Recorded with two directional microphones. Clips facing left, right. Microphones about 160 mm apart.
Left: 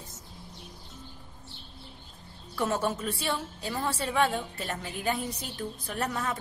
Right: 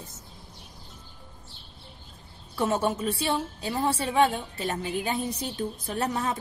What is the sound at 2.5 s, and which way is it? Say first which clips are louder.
A woman's voice: right 3 dB; 20° right (ahead or behind).